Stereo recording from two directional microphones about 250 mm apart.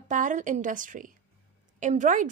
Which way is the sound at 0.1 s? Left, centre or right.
Right.